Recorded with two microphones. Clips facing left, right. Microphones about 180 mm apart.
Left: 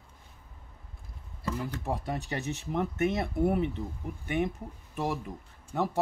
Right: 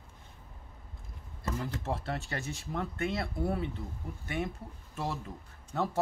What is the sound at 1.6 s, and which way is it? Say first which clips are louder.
Speech: left 1 dB; 15° left (ahead or behind).